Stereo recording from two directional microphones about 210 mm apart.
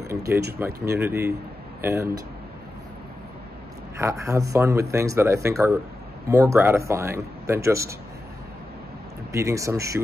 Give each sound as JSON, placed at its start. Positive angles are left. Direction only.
{"t": 0.0, "sound": "a sound", "side_deg": -10}
{"t": 0.6, "sound": "speech", "side_deg": -10}
{"t": 4.0, "sound": "speech", "side_deg": -15}
{"t": 9.3, "sound": "speech", "side_deg": -15}